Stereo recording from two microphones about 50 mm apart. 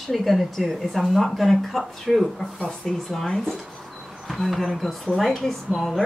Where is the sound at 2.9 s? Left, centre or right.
Centre.